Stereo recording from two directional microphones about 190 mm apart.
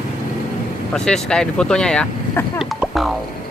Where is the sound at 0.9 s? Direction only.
5° left (ahead or behind).